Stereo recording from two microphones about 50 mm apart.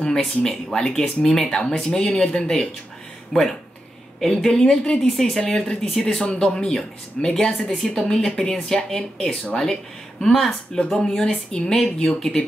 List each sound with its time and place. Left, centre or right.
0.0 s speech: centre
3.3 s speech: centre
4.2 s speech: centre